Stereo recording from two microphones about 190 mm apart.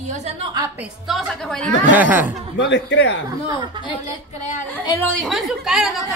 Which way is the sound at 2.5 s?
70° left (ahead or behind).